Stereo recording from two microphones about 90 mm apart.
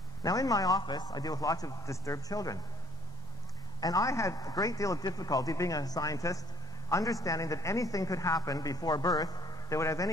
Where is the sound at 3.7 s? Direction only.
45° left (ahead or behind).